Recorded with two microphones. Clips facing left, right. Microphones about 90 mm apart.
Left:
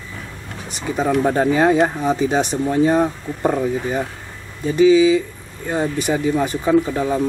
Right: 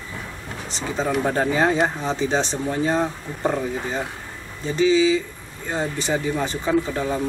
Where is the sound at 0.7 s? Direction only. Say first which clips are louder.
Left 4 dB; 10° left (ahead or behind).